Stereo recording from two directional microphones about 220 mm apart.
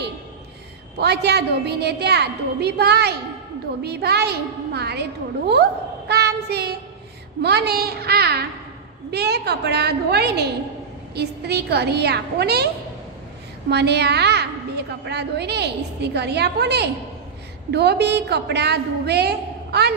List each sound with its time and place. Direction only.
0.9 s a woman's voice: 50° right (ahead or behind)
13.7 s a woman's voice: 50° right (ahead or behind)